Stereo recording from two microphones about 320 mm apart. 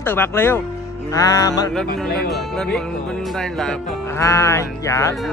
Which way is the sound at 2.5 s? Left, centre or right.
Centre.